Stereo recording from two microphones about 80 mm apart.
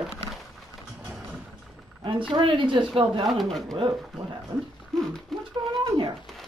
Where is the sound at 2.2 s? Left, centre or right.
Right.